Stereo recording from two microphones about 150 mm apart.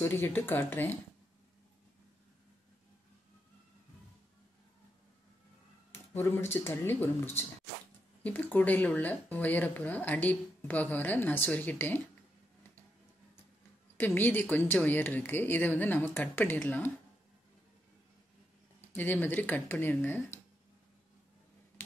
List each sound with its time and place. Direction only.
0.0 s speech: 15° left (ahead or behind)
5.9 s speech: 15° left (ahead or behind)
13.9 s speech: 10° left (ahead or behind)
18.9 s speech: 10° left (ahead or behind)